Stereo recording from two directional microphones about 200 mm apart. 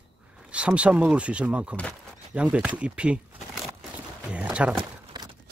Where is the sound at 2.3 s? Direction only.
5° right (ahead or behind).